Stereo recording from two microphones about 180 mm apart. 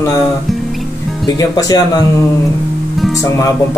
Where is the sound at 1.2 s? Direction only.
20° left (ahead or behind).